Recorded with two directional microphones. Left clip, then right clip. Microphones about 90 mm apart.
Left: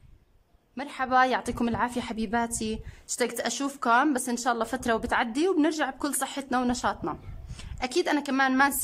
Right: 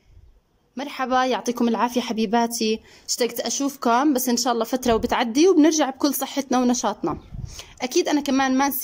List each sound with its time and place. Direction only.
0.7 s a woman's voice: 15° right (ahead or behind)